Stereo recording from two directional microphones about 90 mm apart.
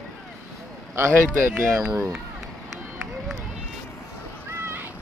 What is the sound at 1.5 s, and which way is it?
Speech, 10° right (ahead or behind).